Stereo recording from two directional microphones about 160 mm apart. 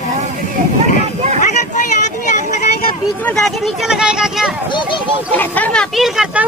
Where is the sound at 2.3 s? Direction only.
50° left (ahead or behind).